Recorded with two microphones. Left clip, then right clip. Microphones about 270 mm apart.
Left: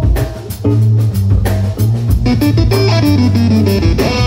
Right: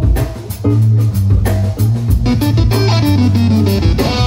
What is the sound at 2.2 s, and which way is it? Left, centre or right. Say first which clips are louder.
Music: left 3 dB; centre.